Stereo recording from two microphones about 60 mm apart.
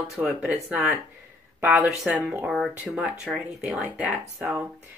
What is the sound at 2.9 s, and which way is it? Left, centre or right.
Speech, centre.